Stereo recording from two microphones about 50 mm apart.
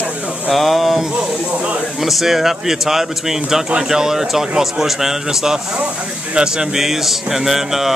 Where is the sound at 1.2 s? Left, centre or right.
Right.